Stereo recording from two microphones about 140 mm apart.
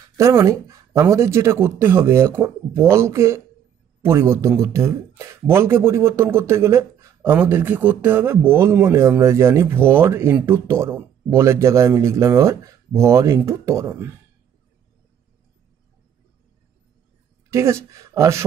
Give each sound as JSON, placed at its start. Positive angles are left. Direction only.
{"t": 0.2, "sound": "speech", "side_deg": -20}
{"t": 17.5, "sound": "speech", "side_deg": -20}